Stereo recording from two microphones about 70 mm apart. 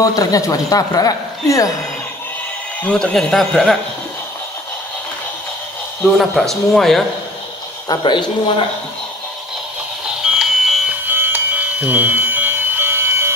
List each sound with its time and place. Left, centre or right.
0.0 s speech: left
3.0 s speech: centre
6.0 s speech: centre
7.9 s speech: left
10.2 s alarm clock: centre
11.1 s a sound: right